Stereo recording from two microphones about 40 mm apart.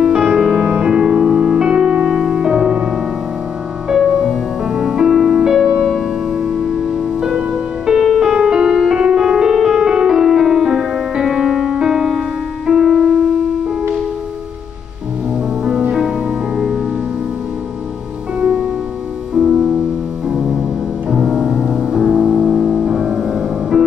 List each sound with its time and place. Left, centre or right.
0.0 s music: centre
0.4 s music: centre
0.7 s music: centre
4.6 s music: centre
8.0 s music: centre
8.3 s music: centre
16.5 s music: centre
19.3 s music: centre
21.1 s music: centre
22.8 s music: centre